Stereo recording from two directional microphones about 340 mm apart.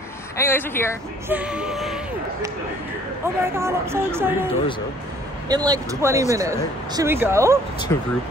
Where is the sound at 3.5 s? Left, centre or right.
Centre.